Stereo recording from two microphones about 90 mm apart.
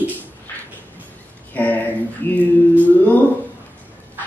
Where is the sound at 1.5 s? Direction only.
20° left (ahead or behind).